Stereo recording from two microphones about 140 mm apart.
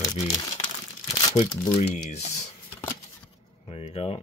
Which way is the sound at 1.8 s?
55° left (ahead or behind).